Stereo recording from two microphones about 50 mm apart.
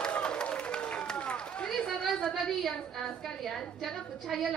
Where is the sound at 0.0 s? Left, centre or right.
Left; by 3.9 s centre.